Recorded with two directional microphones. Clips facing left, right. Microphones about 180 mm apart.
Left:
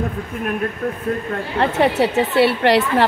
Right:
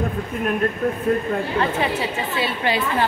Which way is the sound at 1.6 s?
65° left (ahead or behind).